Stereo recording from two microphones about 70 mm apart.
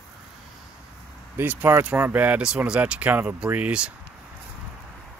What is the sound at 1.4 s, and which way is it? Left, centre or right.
Speech, right.